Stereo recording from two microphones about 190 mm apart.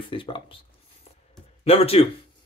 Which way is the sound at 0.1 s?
25° left (ahead or behind).